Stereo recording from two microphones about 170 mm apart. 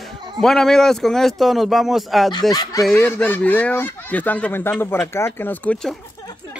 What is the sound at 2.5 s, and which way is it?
Speech, 20° left (ahead or behind).